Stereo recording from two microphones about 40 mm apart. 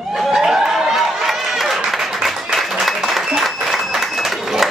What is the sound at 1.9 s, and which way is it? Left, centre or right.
Applause, centre.